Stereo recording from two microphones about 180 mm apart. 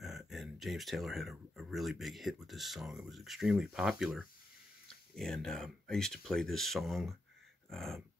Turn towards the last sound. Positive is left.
turn(degrees=0)  # may be behind; listen again after turning